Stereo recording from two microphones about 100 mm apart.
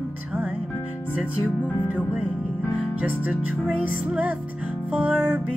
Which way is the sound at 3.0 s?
15° right (ahead or behind).